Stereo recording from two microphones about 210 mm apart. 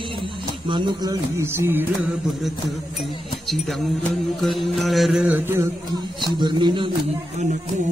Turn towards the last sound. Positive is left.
turn(degrees=-20)  # may be behind; listen again after turning